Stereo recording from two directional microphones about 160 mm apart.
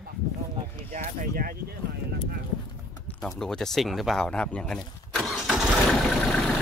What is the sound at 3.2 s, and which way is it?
Speech, 5° left (ahead or behind).